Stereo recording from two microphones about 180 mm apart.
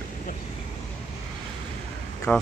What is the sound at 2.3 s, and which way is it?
Speech, 5° left (ahead or behind).